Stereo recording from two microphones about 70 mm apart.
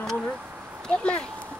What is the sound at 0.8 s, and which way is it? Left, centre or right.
Speech, centre.